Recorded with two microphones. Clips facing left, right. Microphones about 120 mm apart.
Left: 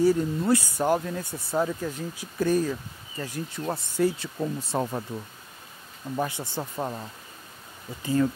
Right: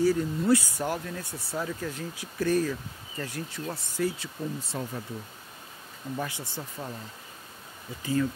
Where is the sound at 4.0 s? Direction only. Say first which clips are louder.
Left 5 dB; 40° left (ahead or behind).